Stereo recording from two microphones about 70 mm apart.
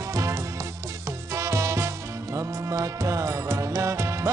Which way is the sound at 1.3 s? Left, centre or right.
Right.